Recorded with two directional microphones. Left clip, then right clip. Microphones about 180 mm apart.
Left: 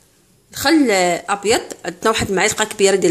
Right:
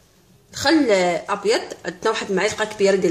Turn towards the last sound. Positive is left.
turn(degrees=55)  # may be behind; listen again after turning